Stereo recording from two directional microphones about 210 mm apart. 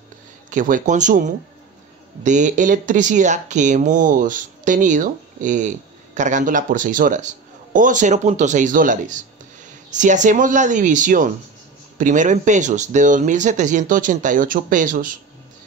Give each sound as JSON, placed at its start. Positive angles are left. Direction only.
{"t": 0.5, "sound": "speech", "side_deg": -40}